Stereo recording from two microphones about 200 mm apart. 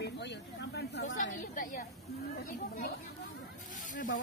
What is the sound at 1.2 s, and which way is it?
Speech, 40° left (ahead or behind).